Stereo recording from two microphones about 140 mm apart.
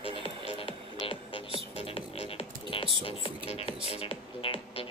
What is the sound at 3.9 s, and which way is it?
Music, 45° left (ahead or behind).